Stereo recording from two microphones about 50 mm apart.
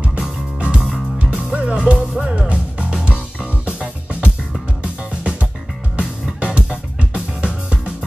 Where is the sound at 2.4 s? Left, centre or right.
Right.